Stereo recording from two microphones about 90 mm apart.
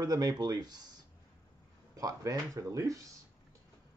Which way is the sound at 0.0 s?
45° right (ahead or behind).